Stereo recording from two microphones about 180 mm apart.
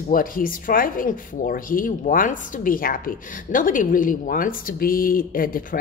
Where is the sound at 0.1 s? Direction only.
50° left (ahead or behind).